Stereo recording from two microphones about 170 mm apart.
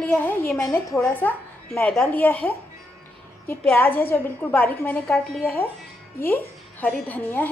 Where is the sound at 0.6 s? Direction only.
20° left (ahead or behind).